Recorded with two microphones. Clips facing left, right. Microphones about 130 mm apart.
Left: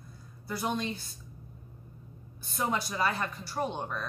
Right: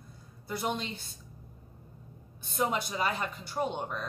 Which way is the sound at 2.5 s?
20° right (ahead or behind).